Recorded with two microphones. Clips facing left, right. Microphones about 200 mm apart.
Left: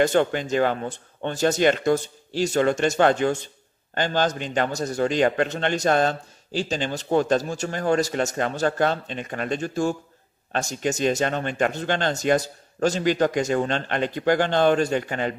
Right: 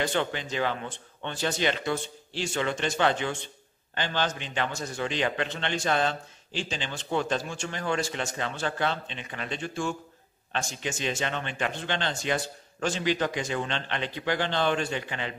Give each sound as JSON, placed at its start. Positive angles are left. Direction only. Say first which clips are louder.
{"t": 0.0, "sound": "a man's voice", "louder": "left 8 dB", "side_deg": 45}